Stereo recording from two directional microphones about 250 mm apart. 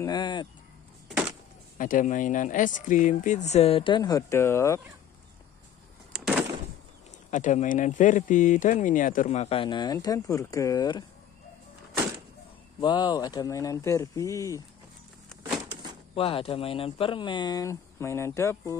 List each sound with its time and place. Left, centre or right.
0.0 s speech: centre
1.0 s music: centre
1.8 s speech: left; by 4.8 s centre
6.1 s a sound: centre
7.2 s speech: left
12.8 s speech: centre
15.7 s a sound: centre
16.2 s speech: left